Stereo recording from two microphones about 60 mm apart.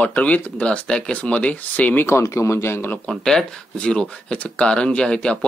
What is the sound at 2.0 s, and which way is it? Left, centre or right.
Speech, left.